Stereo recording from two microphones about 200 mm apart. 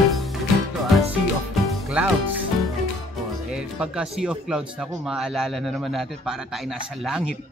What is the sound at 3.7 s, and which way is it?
Speech, 5° right (ahead or behind).